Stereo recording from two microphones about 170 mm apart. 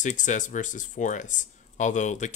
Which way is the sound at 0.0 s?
45° left (ahead or behind).